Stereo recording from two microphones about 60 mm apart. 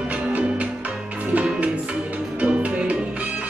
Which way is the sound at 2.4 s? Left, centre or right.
Centre.